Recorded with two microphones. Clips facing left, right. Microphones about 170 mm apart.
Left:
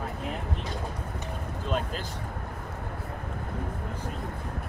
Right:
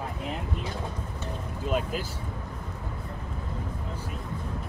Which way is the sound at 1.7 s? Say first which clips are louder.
Right 2 dB; 10° right (ahead or behind).